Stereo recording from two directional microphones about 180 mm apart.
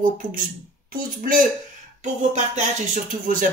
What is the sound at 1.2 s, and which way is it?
Speech, 50° right (ahead or behind).